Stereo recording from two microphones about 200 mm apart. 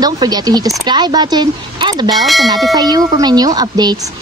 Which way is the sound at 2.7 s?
20° right (ahead or behind).